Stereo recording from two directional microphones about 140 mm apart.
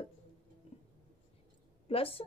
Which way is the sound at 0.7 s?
45° left (ahead or behind).